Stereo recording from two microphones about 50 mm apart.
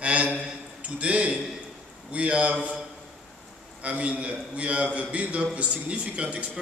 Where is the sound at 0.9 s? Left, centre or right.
Right.